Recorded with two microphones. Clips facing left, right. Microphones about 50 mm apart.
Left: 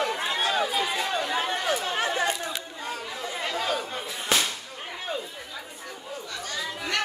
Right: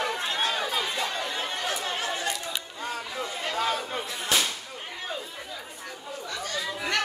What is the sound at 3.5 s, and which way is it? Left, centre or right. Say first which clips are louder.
Chatter: right 1 dB; centre.